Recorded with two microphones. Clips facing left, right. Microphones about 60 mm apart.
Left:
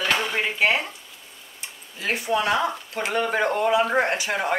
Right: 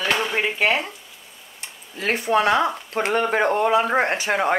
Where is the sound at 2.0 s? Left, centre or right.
Right.